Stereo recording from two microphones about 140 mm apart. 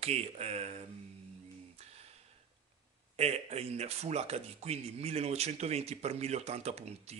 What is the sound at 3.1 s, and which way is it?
A man's voice, 50° right (ahead or behind).